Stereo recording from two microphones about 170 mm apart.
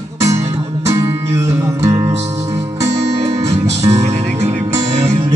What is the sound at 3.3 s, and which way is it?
Music, 20° right (ahead or behind).